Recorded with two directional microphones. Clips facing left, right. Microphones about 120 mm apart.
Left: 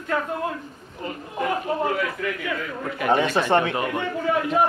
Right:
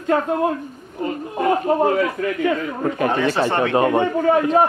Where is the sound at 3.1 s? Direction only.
15° left (ahead or behind).